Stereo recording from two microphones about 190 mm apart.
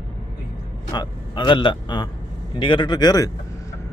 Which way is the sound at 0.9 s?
25° left (ahead or behind).